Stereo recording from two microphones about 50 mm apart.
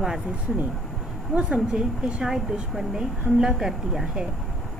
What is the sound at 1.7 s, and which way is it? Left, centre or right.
A woman's voice, centre.